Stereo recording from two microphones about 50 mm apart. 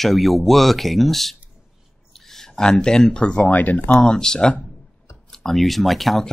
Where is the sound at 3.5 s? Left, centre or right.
Left.